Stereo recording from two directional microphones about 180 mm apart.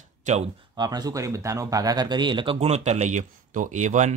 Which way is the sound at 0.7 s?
20° right (ahead or behind).